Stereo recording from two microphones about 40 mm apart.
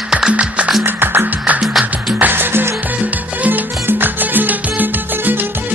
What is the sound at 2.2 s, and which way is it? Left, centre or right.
Music, right.